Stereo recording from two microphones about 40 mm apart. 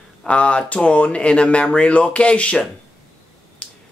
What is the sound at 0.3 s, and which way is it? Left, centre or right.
Speech, left.